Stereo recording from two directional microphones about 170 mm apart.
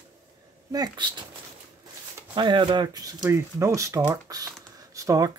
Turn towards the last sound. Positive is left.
turn(degrees=-20)  # may be behind; listen again after turning